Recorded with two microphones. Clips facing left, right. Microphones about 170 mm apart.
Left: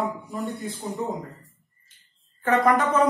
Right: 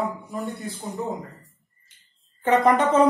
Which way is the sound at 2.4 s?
20° right (ahead or behind).